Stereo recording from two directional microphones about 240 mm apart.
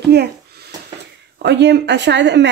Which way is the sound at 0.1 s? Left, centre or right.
Right.